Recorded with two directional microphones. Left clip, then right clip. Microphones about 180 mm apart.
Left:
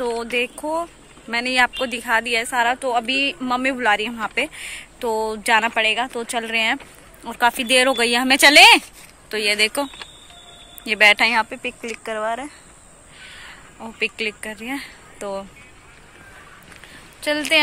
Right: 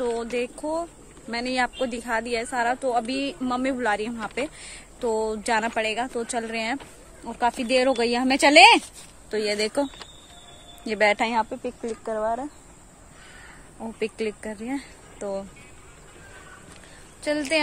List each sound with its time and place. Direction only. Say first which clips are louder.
0.0 s a woman's voice: left 4 dB; 10° left (ahead or behind)
1.8 s a woman's voice: left 6 dB; 5° right (ahead or behind)
9.3 s speech: left 6 dB; 25° right (ahead or behind)
10.8 s speech: left 7 dB; 25° right (ahead or behind)
12.0 s a woman's voice: left 2 dB; centre (ahead or behind)
13.9 s speech: left 5 dB; 35° right (ahead or behind)
15.1 s speech: left 2 dB; 5° right (ahead or behind)
17.2 s speech: left 5 dB; 5° left (ahead or behind)